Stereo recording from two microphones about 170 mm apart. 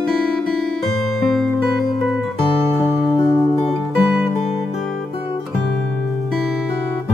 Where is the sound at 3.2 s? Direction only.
20° left (ahead or behind).